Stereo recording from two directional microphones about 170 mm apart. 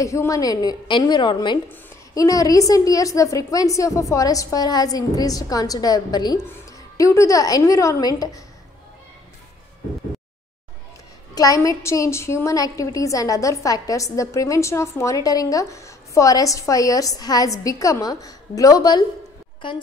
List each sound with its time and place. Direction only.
0.0 s a woman's voice: 20° left (ahead or behind)
11.3 s a woman's voice: 20° left (ahead or behind)